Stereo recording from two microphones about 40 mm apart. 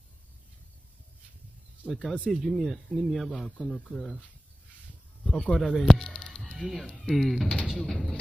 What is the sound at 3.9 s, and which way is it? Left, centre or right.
Speech, centre.